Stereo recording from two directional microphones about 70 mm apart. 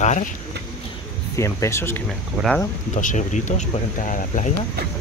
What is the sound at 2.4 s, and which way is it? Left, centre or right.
Speech, centre.